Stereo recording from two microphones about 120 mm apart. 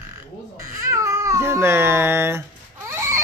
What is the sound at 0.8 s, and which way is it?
Speech, 25° right (ahead or behind).